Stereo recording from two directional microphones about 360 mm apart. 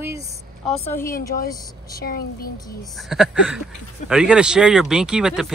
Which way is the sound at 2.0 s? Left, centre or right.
Left.